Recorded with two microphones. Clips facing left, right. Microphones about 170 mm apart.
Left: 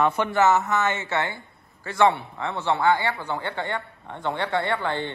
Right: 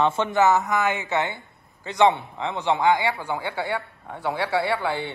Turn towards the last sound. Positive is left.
turn(degrees=-10)  # may be behind; listen again after turning